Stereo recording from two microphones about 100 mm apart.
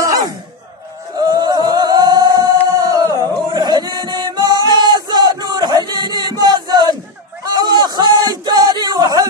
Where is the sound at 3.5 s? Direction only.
45° right (ahead or behind).